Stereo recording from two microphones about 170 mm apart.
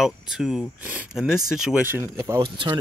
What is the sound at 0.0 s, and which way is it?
Speech, centre (ahead or behind).